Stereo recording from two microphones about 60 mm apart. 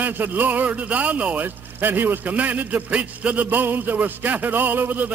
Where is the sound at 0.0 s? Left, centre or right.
Right.